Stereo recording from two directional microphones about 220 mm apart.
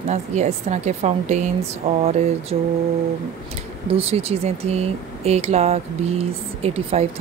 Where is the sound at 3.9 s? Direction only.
25° right (ahead or behind).